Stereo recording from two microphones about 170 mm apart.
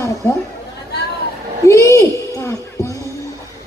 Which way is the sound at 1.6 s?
15° left (ahead or behind).